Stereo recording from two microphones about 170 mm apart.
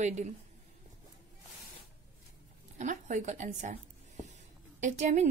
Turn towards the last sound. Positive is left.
turn(degrees=-45)  # may be behind; listen again after turning